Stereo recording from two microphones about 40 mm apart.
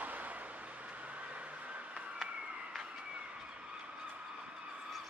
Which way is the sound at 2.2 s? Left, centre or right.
Right.